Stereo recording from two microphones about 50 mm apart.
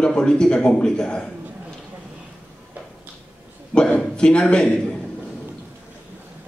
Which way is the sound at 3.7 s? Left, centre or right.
Left.